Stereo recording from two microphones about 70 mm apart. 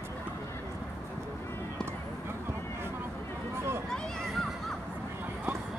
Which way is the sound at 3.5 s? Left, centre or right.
Right.